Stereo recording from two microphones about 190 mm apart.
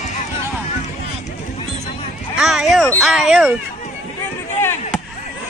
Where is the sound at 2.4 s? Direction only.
Centre (ahead or behind).